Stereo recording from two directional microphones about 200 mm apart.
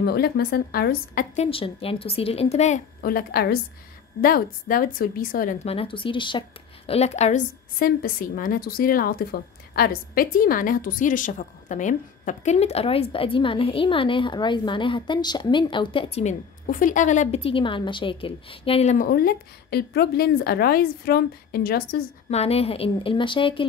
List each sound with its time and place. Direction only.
0.0 s a woman's voice: 50° left (ahead or behind)
1.3 s a woman's voice: 30° left (ahead or behind)
3.0 s a woman's voice: 50° left (ahead or behind); by 16.3 s 30° left (ahead or behind)
16.6 s a woman's voice: 40° left (ahead or behind)
22.3 s a woman's voice: 30° left (ahead or behind)